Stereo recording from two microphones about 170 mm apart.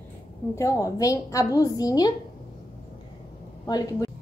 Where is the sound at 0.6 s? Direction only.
20° left (ahead or behind).